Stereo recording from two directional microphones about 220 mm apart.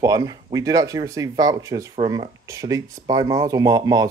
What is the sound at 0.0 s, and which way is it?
Speech, 15° right (ahead or behind).